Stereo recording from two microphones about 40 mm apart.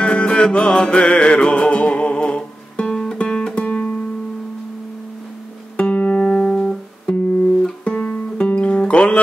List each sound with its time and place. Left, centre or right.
0.0 s music: left
5.8 s music: left
6.2 s music: centre
7.1 s guitar: left
8.5 s music: left